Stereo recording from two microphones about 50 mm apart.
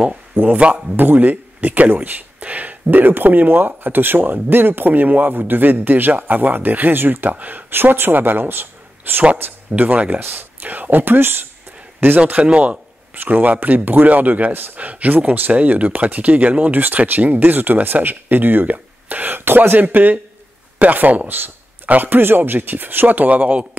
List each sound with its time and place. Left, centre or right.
0.0 s speech: right
0.9 s speech: right
9.4 s speech: right
12.4 s speech: right
13.1 s speech: right